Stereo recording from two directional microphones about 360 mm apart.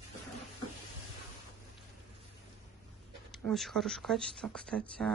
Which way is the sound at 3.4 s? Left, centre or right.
Centre.